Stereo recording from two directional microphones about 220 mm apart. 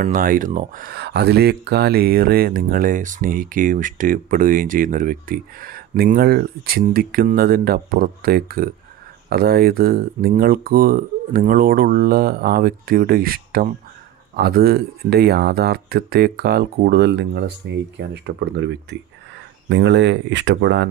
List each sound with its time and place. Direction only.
0.0 s speech: 40° right (ahead or behind)